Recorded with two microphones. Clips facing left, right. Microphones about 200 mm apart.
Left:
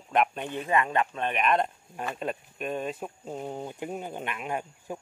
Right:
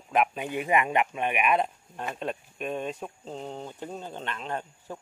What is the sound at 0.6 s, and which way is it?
Speech, 15° right (ahead or behind).